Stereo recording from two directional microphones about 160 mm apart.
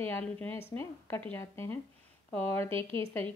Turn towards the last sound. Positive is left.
turn(degrees=15)  # may be behind; listen again after turning